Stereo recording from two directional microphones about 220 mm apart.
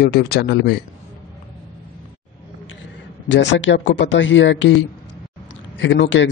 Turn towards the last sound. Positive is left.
turn(degrees=55)  # may be behind; listen again after turning